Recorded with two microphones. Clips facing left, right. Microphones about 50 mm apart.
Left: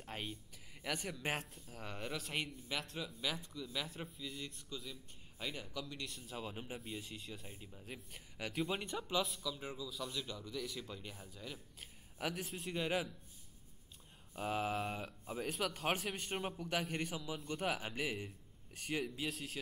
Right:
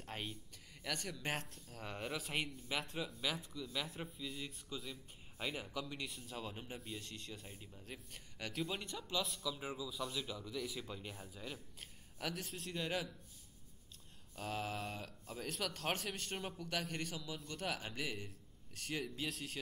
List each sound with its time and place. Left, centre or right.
0.0 s a sound: centre
0.8 s a man's voice: centre
9.2 s a man's voice: centre
12.2 s speech: centre
14.3 s speech: centre